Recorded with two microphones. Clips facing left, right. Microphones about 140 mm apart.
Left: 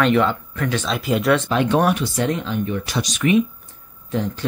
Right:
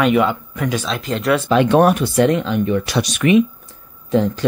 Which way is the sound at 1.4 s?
90° right.